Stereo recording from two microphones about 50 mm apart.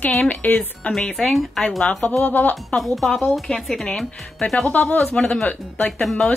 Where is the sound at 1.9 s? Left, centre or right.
Left.